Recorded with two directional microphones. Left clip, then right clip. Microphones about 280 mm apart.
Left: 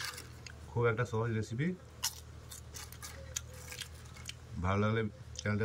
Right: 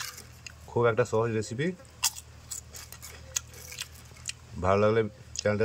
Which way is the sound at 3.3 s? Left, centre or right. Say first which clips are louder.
Right 9 dB; right.